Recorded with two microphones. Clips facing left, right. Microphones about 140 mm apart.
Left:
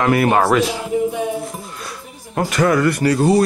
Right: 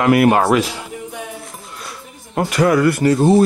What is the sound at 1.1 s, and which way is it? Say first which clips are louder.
Music: left 8 dB; centre (ahead or behind).